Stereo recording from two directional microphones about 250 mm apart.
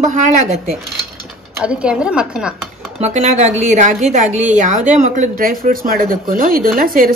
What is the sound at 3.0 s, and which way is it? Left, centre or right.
A woman's voice, right.